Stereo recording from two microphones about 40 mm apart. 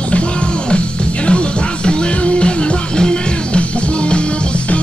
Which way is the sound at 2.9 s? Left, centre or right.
Left.